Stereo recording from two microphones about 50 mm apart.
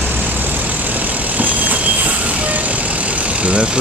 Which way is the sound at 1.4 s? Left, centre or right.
Right.